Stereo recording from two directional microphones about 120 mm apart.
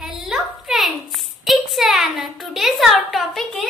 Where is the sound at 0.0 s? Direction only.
5° right (ahead or behind).